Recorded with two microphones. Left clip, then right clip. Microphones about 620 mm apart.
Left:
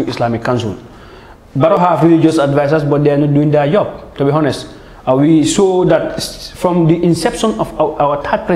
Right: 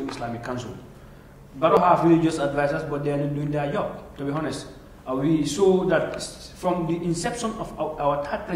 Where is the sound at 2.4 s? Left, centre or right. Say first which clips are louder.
Left 12 dB; left.